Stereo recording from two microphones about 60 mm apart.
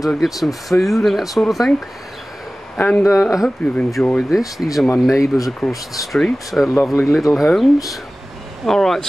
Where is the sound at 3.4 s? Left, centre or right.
Centre.